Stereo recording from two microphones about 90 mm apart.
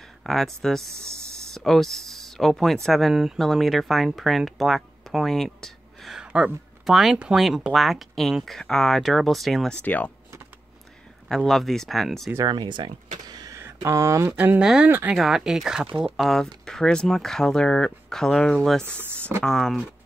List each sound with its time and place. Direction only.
0.2 s speech: centre (ahead or behind)
6.1 s speech: 10° right (ahead or behind)
9.8 s speech: 20° left (ahead or behind)
11.2 s speech: centre (ahead or behind)
12.4 s a sound: 55° right (ahead or behind)
13.6 s speech: 30° right (ahead or behind)
14.3 s speech: 20° right (ahead or behind)
14.6 s speech: 5° right (ahead or behind)
14.9 s speech: 25° right (ahead or behind)
15.1 s speech: 5° right (ahead or behind)
16.2 s speech: 5° left (ahead or behind)